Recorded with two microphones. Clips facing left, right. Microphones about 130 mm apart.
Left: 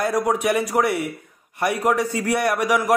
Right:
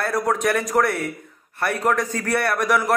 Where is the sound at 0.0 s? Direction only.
10° left (ahead or behind).